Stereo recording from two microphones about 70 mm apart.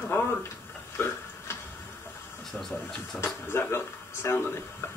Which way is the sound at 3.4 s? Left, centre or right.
Left.